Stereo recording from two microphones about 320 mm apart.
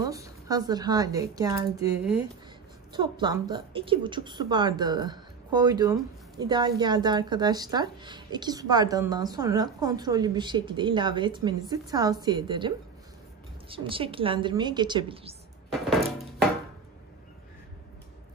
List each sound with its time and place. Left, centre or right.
0.0 s a woman's voice: centre